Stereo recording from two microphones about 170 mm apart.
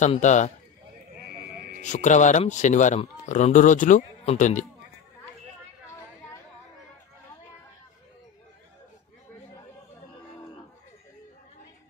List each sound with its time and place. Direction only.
0.0 s speech: 45° left (ahead or behind)
1.8 s speech: 45° left (ahead or behind)